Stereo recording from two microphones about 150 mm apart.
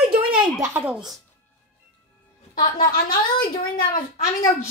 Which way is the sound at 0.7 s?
5° right (ahead or behind).